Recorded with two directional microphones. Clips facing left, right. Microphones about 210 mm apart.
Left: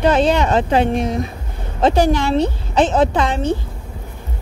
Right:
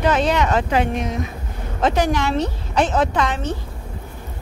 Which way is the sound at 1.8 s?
30° left (ahead or behind).